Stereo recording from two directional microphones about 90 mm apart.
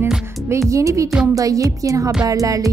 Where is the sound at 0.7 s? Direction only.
35° right (ahead or behind).